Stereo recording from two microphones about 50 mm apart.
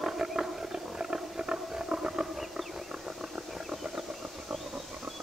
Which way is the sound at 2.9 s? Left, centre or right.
Centre.